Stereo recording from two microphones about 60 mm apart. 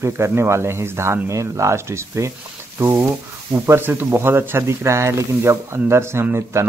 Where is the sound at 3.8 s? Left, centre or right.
Right.